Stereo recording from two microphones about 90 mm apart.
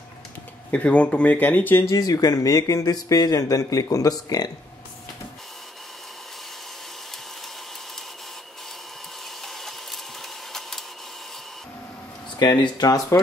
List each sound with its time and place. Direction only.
0.7 s speech: 15° left (ahead or behind)
1.9 s speech: 45° left (ahead or behind)
9.4 s a sound: 5° left (ahead or behind)
12.4 s speech: 50° left (ahead or behind)